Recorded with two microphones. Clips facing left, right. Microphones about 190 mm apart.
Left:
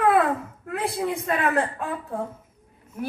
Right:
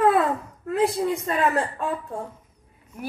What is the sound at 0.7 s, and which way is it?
A woman's voice, 60° left (ahead or behind).